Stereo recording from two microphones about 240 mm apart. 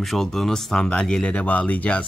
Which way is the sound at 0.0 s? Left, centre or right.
Centre.